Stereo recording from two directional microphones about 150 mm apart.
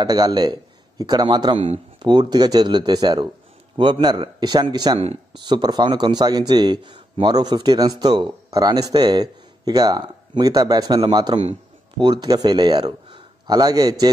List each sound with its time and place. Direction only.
0.0 s speech: 25° right (ahead or behind)
4.9 s speech: 40° right (ahead or behind)
5.4 s speech: 30° right (ahead or behind)